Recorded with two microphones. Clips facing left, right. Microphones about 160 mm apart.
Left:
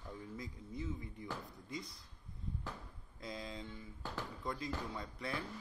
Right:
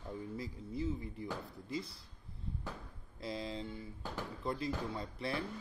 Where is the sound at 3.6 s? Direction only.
10° right (ahead or behind).